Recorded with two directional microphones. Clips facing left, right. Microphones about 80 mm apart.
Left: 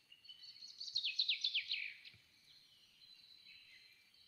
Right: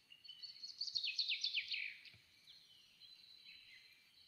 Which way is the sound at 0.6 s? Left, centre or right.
Centre.